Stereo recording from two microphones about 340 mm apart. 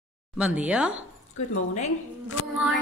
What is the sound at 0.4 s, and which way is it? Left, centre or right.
Speech, centre.